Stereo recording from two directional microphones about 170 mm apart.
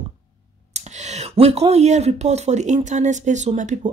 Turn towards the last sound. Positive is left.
turn(degrees=-45)  # may be behind; listen again after turning